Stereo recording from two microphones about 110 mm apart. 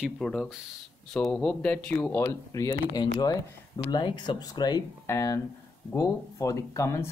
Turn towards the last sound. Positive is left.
turn(degrees=30)  # may be behind; listen again after turning